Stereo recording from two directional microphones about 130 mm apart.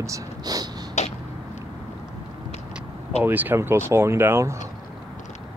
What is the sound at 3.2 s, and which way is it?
Speech, 15° right (ahead or behind).